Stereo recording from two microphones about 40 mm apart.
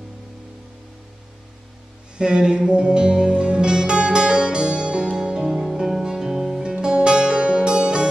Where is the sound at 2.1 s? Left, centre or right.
Centre.